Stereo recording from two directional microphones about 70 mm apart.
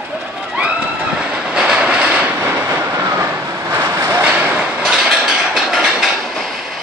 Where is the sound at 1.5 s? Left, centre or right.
Centre.